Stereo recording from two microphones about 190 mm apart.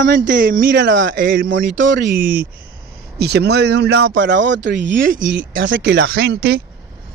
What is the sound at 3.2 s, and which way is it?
Speech, 60° right (ahead or behind).